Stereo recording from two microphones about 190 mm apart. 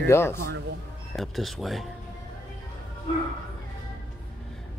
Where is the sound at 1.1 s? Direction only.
Centre (ahead or behind).